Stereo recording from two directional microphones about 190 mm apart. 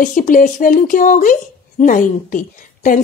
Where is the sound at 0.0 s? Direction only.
45° left (ahead or behind).